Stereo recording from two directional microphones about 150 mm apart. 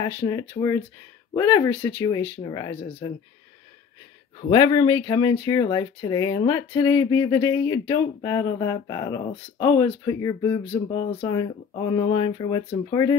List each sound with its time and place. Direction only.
0.0 s speech: 25° left (ahead or behind)
4.5 s speech: 30° left (ahead or behind)
10.7 s speech: 35° left (ahead or behind)